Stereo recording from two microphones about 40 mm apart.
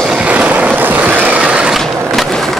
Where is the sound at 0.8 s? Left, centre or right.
Right.